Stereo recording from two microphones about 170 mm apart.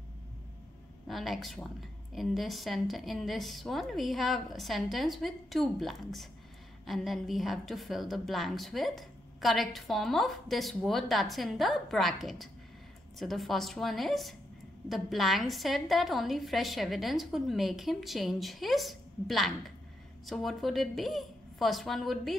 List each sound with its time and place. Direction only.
1.0 s a woman's voice: centre (ahead or behind)